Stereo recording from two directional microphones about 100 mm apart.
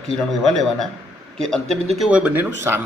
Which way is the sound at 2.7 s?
20° right (ahead or behind).